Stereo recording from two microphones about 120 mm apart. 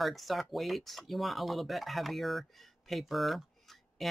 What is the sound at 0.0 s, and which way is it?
Speech, centre (ahead or behind).